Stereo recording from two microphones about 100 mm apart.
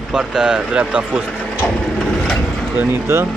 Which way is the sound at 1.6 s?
5° left (ahead or behind).